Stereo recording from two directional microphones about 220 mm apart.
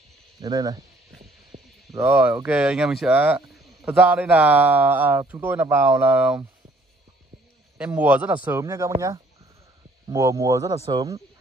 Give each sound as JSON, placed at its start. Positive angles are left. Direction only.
{"t": 0.4, "sound": "speech", "side_deg": -15}
{"t": 1.5, "sound": "a sound", "side_deg": -25}
{"t": 2.0, "sound": "speech", "side_deg": -10}
{"t": 7.7, "sound": "speech", "side_deg": -10}